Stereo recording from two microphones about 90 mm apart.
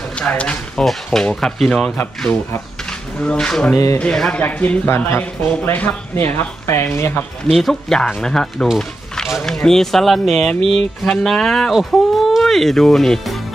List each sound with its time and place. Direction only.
0.1 s speech: 10° left (ahead or behind)
2.0 s speech: 25° left (ahead or behind)
2.9 s speech: 10° left (ahead or behind)
3.7 s speech: 40° left (ahead or behind)
4.0 s speech: 10° left (ahead or behind)
7.4 s speech: centre (ahead or behind)